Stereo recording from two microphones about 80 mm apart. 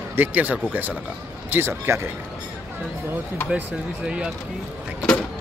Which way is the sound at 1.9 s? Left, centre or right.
Right.